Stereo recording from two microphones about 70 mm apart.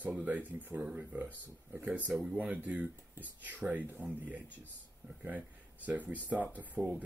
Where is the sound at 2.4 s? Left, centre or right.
Right.